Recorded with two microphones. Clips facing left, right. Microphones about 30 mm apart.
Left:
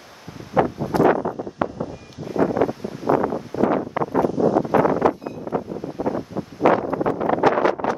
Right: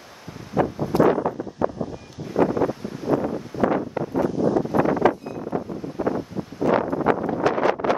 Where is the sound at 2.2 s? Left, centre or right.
Centre.